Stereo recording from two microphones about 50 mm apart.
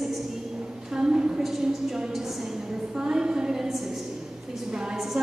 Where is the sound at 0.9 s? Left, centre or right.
Centre.